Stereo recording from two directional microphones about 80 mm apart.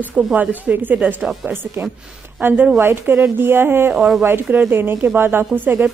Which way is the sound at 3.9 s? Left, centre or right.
Centre.